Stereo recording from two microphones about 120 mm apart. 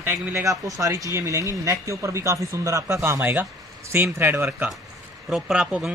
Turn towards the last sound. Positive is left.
turn(degrees=-10)  # may be behind; listen again after turning